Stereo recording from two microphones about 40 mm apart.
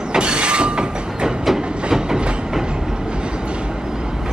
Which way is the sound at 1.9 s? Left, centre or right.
Centre.